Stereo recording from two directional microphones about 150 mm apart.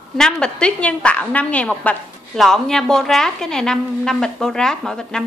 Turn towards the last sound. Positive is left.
turn(degrees=5)  # may be behind; listen again after turning